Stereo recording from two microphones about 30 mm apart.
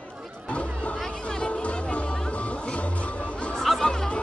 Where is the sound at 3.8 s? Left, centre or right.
Left.